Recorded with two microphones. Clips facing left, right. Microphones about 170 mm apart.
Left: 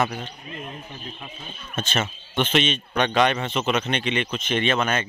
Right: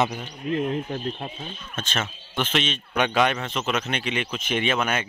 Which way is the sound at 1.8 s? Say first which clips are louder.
Left 4 dB; centre (ahead or behind).